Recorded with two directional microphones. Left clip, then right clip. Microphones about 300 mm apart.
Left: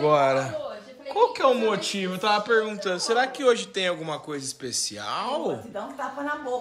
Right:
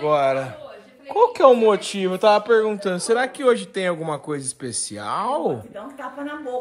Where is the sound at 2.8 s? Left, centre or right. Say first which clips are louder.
Right 3 dB; centre.